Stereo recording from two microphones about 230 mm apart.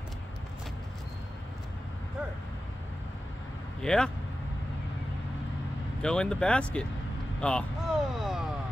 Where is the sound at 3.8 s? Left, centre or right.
Centre.